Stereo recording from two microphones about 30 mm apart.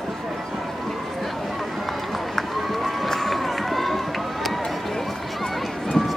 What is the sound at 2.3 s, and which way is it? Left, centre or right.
Run, centre.